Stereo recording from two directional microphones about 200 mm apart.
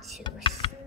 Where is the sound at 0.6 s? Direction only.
25° left (ahead or behind).